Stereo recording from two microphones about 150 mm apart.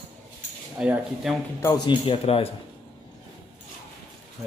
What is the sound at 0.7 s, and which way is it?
Speech, 5° right (ahead or behind).